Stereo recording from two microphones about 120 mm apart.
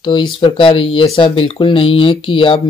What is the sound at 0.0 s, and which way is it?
Speech, 40° left (ahead or behind).